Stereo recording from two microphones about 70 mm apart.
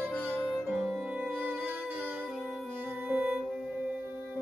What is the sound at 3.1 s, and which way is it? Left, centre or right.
Music, right.